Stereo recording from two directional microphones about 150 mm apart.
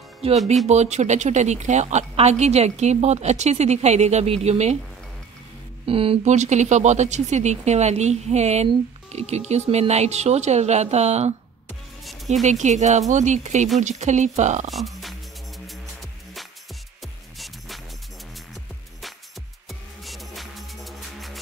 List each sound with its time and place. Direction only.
0.2 s speech: 40° right (ahead or behind)
5.9 s speech: 40° right (ahead or behind)
12.4 s speech: 50° right (ahead or behind)
14.7 s music: centre (ahead or behind)